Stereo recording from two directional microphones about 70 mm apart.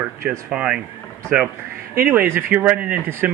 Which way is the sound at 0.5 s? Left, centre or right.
Centre.